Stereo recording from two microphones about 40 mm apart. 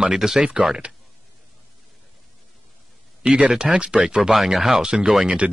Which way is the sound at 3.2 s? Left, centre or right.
Right.